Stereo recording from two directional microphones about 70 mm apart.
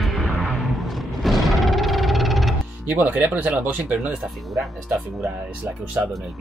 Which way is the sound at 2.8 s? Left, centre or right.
Right.